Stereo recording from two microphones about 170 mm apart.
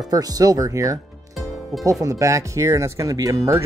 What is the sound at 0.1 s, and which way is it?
Speech, 20° right (ahead or behind).